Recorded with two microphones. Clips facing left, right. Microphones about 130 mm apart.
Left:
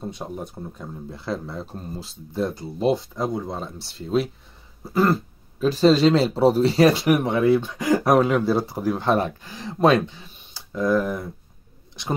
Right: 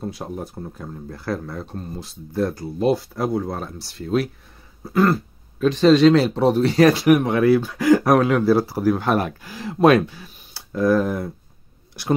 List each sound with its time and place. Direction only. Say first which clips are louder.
0.0 s speech: right 2 dB; centre (ahead or behind)
4.8 s speech: right 2 dB; centre (ahead or behind)
9.8 s speech: right 3 dB; 25° left (ahead or behind)
10.1 s a sound: right 2 dB; 10° right (ahead or behind)
11.0 s speech: right 2 dB; 10° right (ahead or behind)